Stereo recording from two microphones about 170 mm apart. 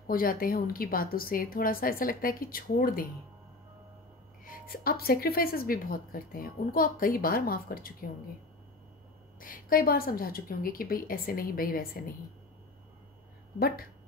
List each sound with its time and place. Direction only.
0.0 s speech: 55° left (ahead or behind)
4.5 s speech: 60° left (ahead or behind)
9.4 s speech: 55° left (ahead or behind)
13.6 s speech: 60° left (ahead or behind)